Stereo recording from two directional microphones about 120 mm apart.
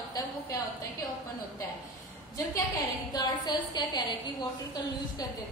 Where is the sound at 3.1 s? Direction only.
35° left (ahead or behind).